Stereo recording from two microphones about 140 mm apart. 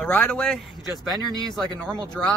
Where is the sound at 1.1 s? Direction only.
25° right (ahead or behind).